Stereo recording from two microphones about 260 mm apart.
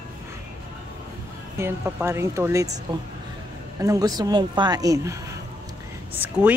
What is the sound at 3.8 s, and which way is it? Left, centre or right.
A woman's voice, centre.